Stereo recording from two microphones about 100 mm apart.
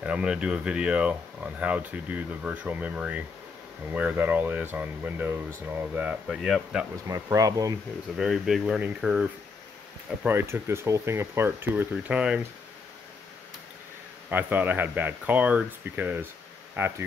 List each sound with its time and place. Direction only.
0.0 s speech: 10° right (ahead or behind)
6.2 s speech: 5° right (ahead or behind)
7.1 s speech: 35° right (ahead or behind)
8.2 s speech: 5° right (ahead or behind)
10.2 s speech: 25° right (ahead or behind)
12.0 s speech: 10° right (ahead or behind)
14.3 s speech: 15° right (ahead or behind)